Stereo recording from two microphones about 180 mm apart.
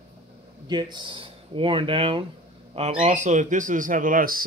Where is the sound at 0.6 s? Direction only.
25° right (ahead or behind).